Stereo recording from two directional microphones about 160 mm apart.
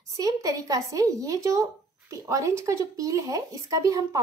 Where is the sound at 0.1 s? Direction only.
20° right (ahead or behind).